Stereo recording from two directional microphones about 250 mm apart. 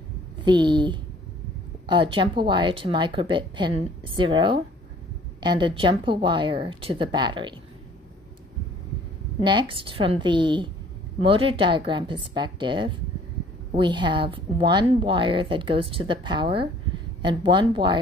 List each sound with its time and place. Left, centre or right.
0.5 s a woman's voice: centre
9.4 s a woman's voice: centre